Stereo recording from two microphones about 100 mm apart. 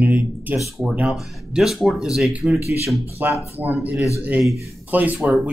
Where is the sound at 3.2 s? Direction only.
20° right (ahead or behind).